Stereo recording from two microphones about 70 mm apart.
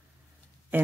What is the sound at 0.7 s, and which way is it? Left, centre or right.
Speech, right.